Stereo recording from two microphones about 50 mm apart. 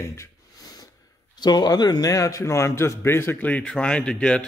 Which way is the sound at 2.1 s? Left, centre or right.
Left.